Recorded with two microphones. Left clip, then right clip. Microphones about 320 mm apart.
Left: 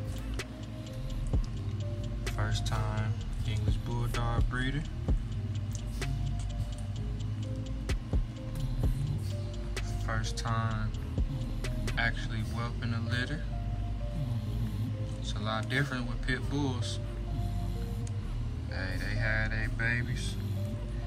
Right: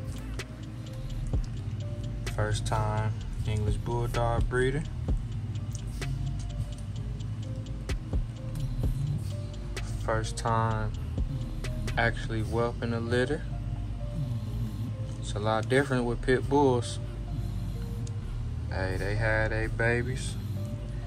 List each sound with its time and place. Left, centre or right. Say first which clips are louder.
2.2 s speech: right 5 dB; centre
5.9 s music: even; centre
9.8 s speech: right 6 dB; centre
15.3 s speech: right 7 dB; centre
18.7 s speech: right 5 dB; centre